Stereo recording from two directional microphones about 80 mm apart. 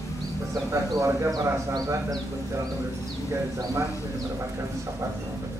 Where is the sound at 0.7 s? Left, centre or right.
Right.